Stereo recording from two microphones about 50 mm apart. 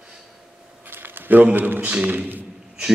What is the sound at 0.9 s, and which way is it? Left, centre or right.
A man's voice, right.